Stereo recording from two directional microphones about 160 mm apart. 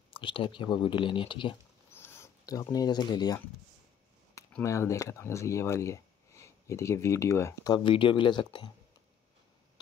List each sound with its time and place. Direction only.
0.1 s speech: 35° left (ahead or behind)
1.9 s a sound: 15° left (ahead or behind)
4.6 s speech: 20° left (ahead or behind)